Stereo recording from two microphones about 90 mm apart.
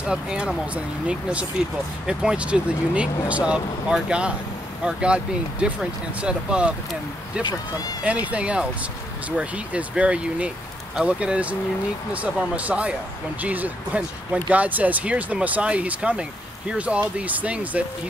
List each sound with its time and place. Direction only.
0.0 s speech: 10° right (ahead or behind)
7.4 s speech: 45° left (ahead or behind)
8.0 s speech: 15° right (ahead or behind)